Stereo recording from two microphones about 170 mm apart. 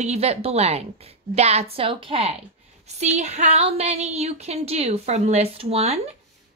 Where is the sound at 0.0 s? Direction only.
40° right (ahead or behind).